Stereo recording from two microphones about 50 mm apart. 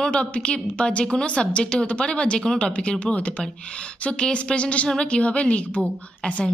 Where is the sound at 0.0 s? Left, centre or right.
Left.